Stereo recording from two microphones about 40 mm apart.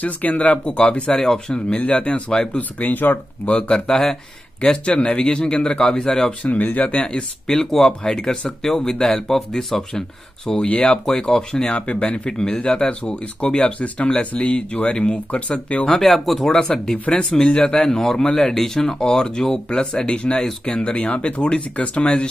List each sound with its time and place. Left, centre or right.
0.0 s speech: left
2.8 s speech: left
3.4 s speech: left; by 6.3 s centre
6.4 s speech: left
7.0 s speech: centre
9.3 s speech: centre
10.6 s speech: left
11.6 s speech: left
12.3 s speech: centre
15.9 s speech: centre
16.4 s speech: centre